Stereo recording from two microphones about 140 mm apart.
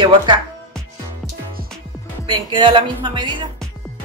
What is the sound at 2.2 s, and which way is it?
Speech, 35° right (ahead or behind).